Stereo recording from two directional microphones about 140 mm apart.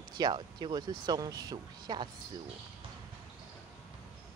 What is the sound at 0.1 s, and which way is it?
Speech, 30° right (ahead or behind).